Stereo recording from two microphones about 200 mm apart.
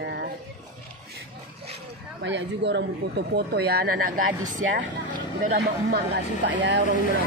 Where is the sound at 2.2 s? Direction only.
60° right (ahead or behind); by 4.6 s 40° right (ahead or behind).